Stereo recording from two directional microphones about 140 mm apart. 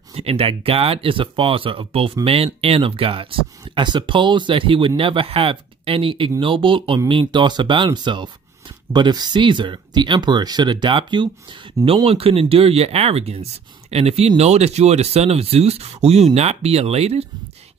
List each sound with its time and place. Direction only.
0.1 s speech: 45° right (ahead or behind)